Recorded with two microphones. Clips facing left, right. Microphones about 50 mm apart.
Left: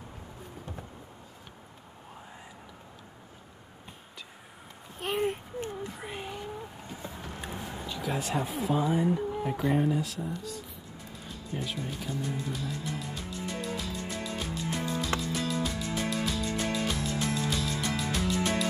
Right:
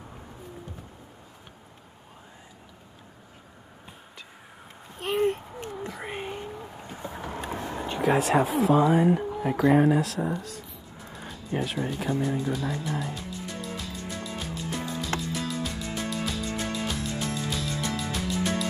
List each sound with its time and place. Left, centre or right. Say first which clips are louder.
4.9 s a sound: right 5 dB; centre
6.0 s vehicle: right 4 dB; right
6.9 s vehicle: right 8 dB; right
7.4 s vehicle: right 5 dB; right
7.8 s a sound: right 11 dB; right
8.1 s speech: right 9 dB; right
11.5 s speech: right 7 dB; right
12.4 s speech: right 6 dB; centre
14.4 s music: even; centre